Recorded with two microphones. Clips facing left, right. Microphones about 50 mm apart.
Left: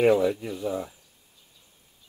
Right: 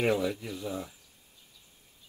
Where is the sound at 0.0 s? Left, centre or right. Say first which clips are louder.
Left 7 dB; centre.